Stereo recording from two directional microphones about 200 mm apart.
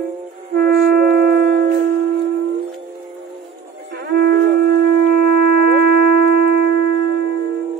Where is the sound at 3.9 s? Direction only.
55° right (ahead or behind).